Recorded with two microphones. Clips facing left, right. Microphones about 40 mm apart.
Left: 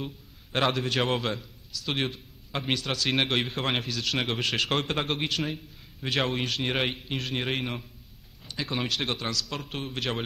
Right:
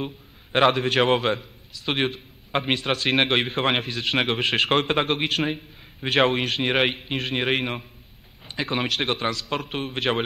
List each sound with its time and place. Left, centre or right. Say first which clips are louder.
0.0 s a man's voice: right 5 dB; right